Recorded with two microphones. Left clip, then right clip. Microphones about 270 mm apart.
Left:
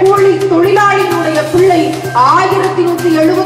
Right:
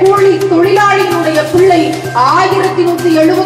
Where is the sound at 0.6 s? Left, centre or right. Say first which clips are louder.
Even; centre.